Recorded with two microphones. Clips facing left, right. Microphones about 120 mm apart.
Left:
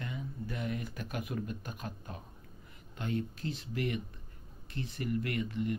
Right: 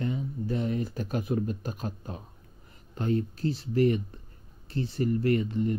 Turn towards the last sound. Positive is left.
turn(degrees=-35)  # may be behind; listen again after turning